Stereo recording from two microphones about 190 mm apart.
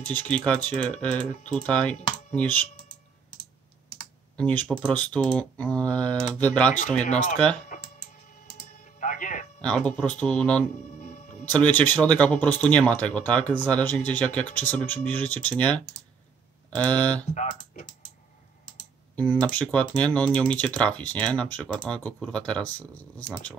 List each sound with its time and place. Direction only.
0.1 s speech: 10° left (ahead or behind)
4.4 s speech: 5° left (ahead or behind)
7.7 s typing: 40° left (ahead or behind)
8.5 s a sound: 50° left (ahead or behind)
9.6 s speech: 5° left (ahead or behind)
17.3 s speech: 40° left (ahead or behind)
19.1 s speech: 10° left (ahead or behind)